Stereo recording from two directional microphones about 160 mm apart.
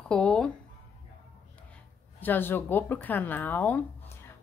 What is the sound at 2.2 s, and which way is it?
A woman's voice, 10° left (ahead or behind).